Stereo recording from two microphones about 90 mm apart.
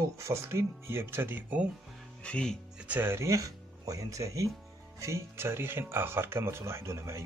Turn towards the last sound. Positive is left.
turn(degrees=-30)  # may be behind; listen again after turning